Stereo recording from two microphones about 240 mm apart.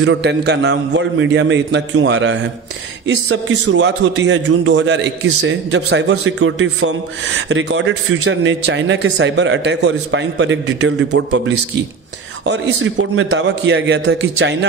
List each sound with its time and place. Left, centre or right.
0.0 s a man's voice: right